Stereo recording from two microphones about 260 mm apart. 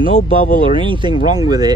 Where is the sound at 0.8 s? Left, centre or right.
Centre.